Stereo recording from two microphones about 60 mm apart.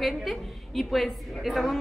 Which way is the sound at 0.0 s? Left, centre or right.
Centre.